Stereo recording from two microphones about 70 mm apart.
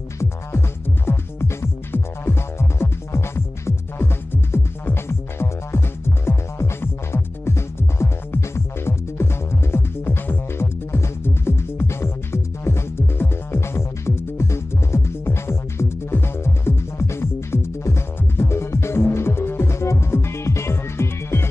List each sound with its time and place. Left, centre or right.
0.2 s music: left